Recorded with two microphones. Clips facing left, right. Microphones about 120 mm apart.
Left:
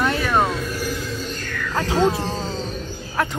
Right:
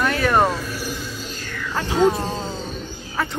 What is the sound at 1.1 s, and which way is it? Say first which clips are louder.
Music: left 4 dB; 10° right (ahead or behind).